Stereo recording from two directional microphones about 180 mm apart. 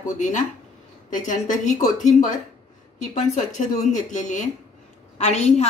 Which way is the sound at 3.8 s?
45° left (ahead or behind).